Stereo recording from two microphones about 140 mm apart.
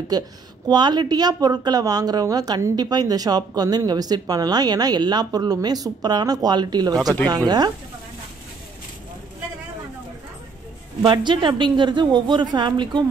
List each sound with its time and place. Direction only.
0.1 s a woman's voice: 30° right (ahead or behind)
11.0 s a woman's voice: 30° right (ahead or behind)